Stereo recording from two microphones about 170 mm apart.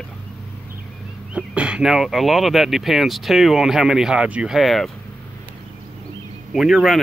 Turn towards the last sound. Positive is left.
turn(degrees=0)  # may be behind; listen again after turning